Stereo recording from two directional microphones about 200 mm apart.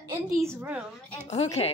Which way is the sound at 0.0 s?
15° right (ahead or behind).